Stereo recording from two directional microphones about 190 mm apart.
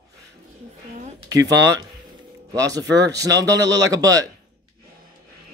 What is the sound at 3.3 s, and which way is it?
Speech, 65° right (ahead or behind).